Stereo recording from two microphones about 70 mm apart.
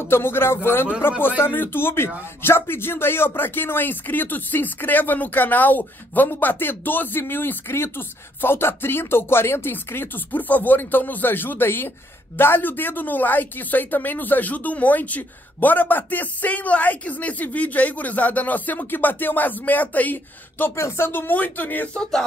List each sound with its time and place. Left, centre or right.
0.0 s speech: left
20.7 s speech: left